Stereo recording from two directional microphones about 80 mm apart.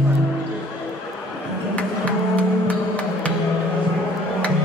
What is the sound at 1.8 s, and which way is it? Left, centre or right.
Music, centre.